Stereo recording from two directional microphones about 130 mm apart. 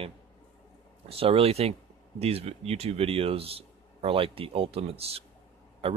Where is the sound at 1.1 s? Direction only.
50° right (ahead or behind).